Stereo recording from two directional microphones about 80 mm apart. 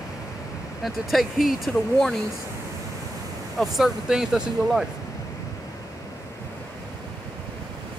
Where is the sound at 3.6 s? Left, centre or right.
Centre.